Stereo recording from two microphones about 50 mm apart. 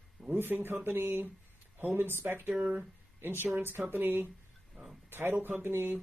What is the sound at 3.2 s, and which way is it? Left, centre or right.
A woman's voice, right.